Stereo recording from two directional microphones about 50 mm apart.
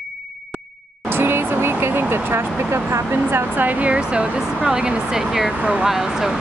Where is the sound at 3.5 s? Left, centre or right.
Right.